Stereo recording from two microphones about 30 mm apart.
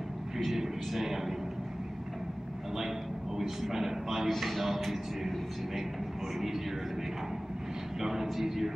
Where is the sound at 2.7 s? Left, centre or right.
Centre.